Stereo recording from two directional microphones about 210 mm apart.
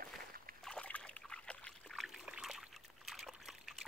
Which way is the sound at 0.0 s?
45° right (ahead or behind).